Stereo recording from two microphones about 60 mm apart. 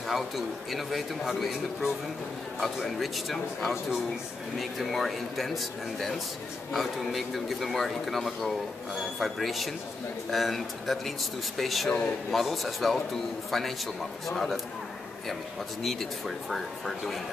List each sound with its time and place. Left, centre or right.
0.1 s speech: centre
15.8 s speech: centre